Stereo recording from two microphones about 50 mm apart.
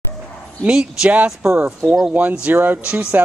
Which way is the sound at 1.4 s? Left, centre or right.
Right.